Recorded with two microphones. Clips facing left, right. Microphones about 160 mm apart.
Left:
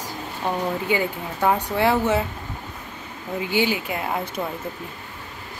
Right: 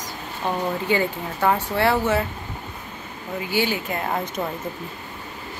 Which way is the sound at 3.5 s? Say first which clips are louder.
Left 1 dB; 15° left (ahead or behind).